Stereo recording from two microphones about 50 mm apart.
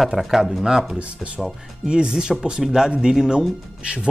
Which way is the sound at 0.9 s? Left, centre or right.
Right.